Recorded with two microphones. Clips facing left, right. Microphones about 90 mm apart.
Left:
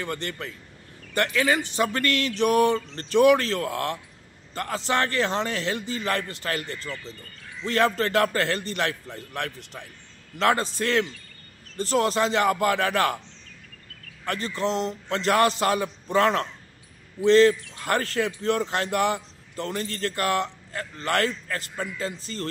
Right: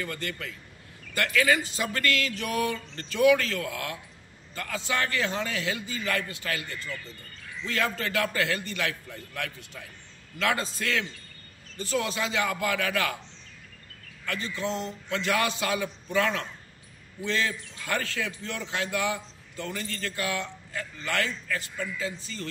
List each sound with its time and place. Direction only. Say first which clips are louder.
0.0 s a man's voice: left 3 dB; 30° left (ahead or behind)
7.6 s a man's voice: left 7 dB; 45° left (ahead or behind)
14.2 s a man's voice: left 5 dB; 35° left (ahead or behind)